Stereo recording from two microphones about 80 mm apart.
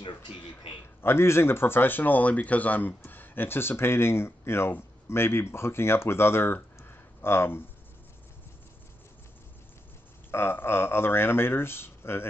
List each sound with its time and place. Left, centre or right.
0.0 s a sound: left
1.0 s speech: left
10.3 s speech: left